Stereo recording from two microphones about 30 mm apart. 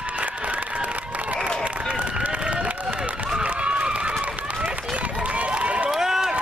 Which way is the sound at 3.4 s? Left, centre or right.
Right.